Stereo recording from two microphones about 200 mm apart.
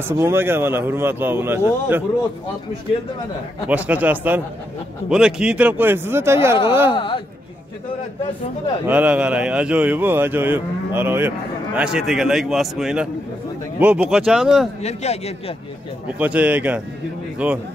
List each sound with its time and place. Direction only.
0.2 s speech: 10° right (ahead or behind)
3.6 s speech: 5° right (ahead or behind)
8.8 s speech: 5° right (ahead or behind)
14.8 s a man's voice: 35° left (ahead or behind)
16.1 s speech: 5° right (ahead or behind)